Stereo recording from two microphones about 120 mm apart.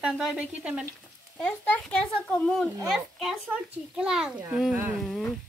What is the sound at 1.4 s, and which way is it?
A child's voice, 5° left (ahead or behind).